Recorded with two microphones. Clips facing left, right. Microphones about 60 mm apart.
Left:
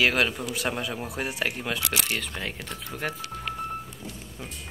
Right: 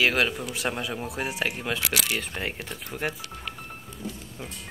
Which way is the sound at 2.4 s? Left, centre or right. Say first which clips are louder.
Right 2 dB; right.